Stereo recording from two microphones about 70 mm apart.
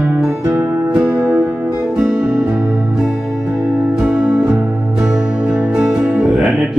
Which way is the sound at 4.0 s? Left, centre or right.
Centre.